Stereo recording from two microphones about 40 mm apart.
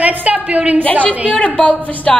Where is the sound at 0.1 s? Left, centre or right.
Right.